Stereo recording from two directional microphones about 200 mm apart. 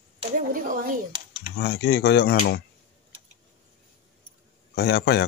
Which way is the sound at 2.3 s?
45° left (ahead or behind).